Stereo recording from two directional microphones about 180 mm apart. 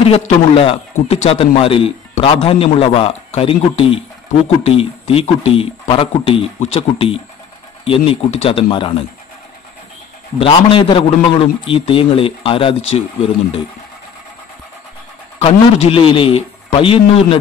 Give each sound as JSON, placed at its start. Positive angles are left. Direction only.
{"t": 0.1, "sound": "a man's voice", "side_deg": 30}
{"t": 10.4, "sound": "a man's voice", "side_deg": 30}
{"t": 15.4, "sound": "a man's voice", "side_deg": 30}